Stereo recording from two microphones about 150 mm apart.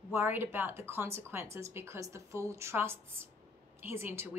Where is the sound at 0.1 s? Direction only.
15° right (ahead or behind).